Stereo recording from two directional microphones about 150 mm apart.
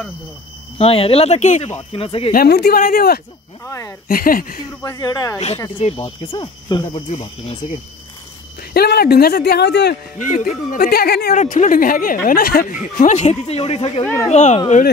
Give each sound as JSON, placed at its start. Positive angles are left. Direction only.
{"t": 0.7, "sound": "speech", "side_deg": 40}
{"t": 2.3, "sound": "speech", "side_deg": 90}
{"t": 3.6, "sound": "speech", "side_deg": 20}
{"t": 4.1, "sound": "speech", "side_deg": 70}
{"t": 4.8, "sound": "speech", "side_deg": 25}
{"t": 5.8, "sound": "speech", "side_deg": 45}
{"t": 8.7, "sound": "speech", "side_deg": 90}
{"t": 11.3, "sound": "speech", "side_deg": 55}
{"t": 12.9, "sound": "speech", "side_deg": 55}